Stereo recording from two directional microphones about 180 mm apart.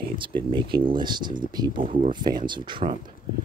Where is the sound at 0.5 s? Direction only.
25° right (ahead or behind).